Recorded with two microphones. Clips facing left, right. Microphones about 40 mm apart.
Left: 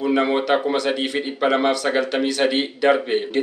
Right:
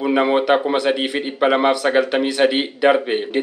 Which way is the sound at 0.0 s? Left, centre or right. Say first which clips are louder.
Right 3 dB; centre.